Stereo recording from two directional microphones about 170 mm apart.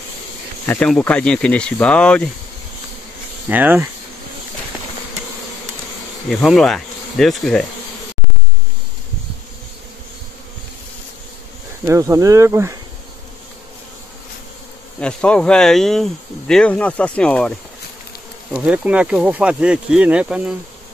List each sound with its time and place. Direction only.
0.7 s speech: 5° left (ahead or behind)
3.4 s speech: 10° right (ahead or behind)
6.2 s speech: centre (ahead or behind)
11.8 s speech: 20° right (ahead or behind)
15.0 s speech: 5° left (ahead or behind)
18.5 s speech: 5° right (ahead or behind)